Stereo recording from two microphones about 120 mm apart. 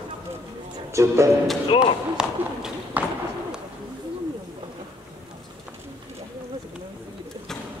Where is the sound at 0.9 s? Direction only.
25° right (ahead or behind).